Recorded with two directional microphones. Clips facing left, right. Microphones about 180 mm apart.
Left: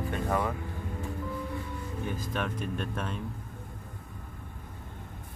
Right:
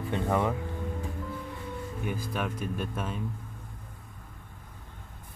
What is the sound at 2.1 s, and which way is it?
Speech, 10° right (ahead or behind).